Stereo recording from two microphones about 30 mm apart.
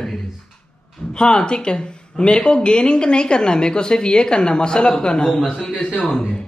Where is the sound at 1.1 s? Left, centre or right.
Left.